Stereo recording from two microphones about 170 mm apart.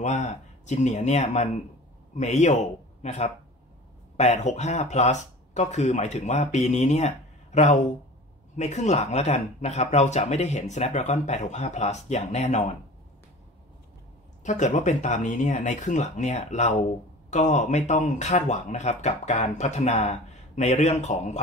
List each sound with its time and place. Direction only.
0.0 s a man's voice: 45° left (ahead or behind)
14.4 s speech: 45° left (ahead or behind)